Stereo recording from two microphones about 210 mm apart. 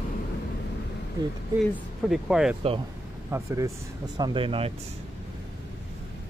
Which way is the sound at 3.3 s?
15° right (ahead or behind).